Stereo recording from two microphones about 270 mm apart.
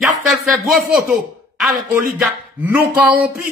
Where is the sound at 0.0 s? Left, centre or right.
Centre.